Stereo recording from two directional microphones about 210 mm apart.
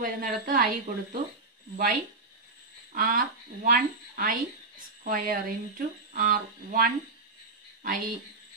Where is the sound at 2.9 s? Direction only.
40° right (ahead or behind).